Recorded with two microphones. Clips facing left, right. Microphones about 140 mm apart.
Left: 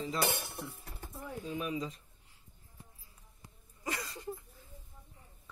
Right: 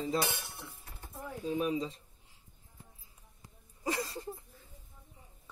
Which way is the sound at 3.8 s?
35° right (ahead or behind).